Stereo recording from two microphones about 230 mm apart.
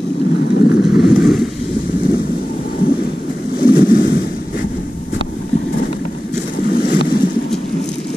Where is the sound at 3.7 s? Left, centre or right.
Left.